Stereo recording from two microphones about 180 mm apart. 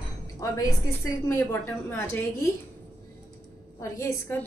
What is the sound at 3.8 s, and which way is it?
Speech, 15° left (ahead or behind).